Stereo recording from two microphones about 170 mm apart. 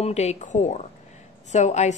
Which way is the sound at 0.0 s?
40° left (ahead or behind).